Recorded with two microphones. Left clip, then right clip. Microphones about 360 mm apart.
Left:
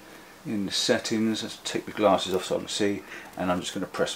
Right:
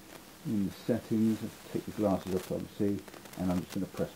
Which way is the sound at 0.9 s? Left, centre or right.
Centre.